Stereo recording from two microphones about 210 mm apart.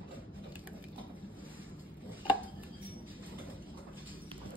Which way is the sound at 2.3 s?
10° right (ahead or behind).